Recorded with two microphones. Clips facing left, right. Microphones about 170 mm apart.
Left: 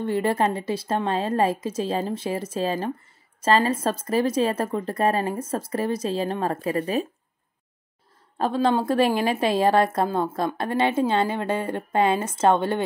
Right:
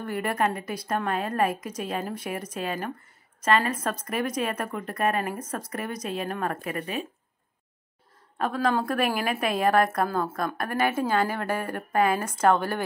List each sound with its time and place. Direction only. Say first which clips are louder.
0.0 s speech: left 5 dB; 25° left (ahead or behind)
8.4 s speech: left 4 dB; 25° left (ahead or behind)